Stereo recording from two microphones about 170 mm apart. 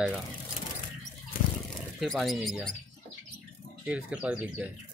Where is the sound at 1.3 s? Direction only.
60° left (ahead or behind).